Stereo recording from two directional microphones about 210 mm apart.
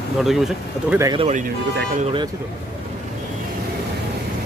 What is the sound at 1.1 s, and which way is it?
Speech, 30° right (ahead or behind).